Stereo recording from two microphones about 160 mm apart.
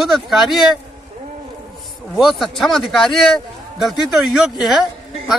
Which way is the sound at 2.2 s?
Centre (ahead or behind).